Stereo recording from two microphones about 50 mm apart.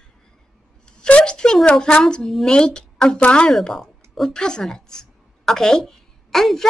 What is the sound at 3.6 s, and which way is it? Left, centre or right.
Speech, centre.